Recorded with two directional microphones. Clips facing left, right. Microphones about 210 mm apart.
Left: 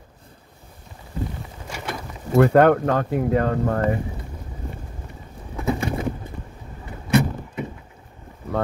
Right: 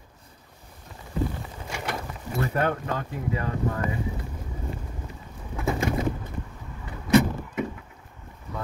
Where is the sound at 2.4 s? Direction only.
70° left (ahead or behind).